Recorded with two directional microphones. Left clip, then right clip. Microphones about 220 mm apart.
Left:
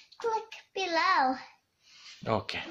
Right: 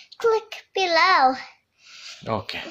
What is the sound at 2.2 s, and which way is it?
Speech, 10° left (ahead or behind).